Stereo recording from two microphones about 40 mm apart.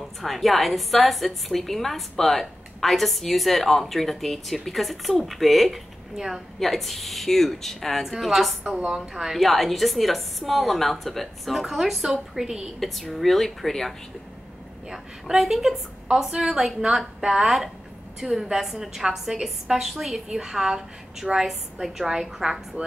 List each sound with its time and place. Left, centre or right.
0.2 s a woman's voice: centre
6.1 s a woman's voice: centre
6.6 s a woman's voice: centre
8.8 s a woman's voice: centre
12.8 s a woman's voice: centre
14.9 s a woman's voice: centre